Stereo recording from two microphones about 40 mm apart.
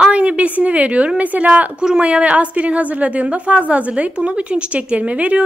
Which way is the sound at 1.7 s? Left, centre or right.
Right.